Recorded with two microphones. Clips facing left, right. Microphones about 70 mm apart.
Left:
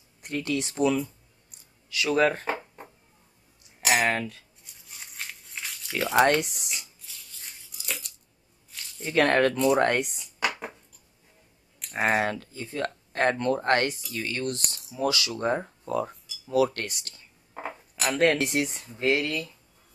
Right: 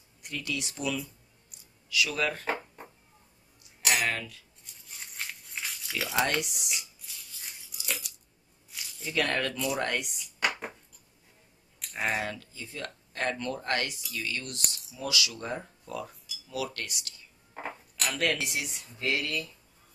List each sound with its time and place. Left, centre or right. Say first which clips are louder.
0.2 s speech: left 7 dB; left
2.4 s a sound: left 2 dB; centre
4.0 s speech: left 6 dB; left
4.6 s a sound: even; centre
5.9 s speech: left 8 dB; left
6.7 s a sound: even; centre
9.0 s speech: left 8 dB; left
11.9 s speech: left 7 dB; left
17.6 s cutlery: left 3 dB; centre
18.1 s speech: left 8 dB; left